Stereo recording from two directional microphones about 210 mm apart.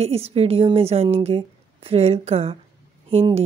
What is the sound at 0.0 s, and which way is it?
A woman's voice, 30° right (ahead or behind).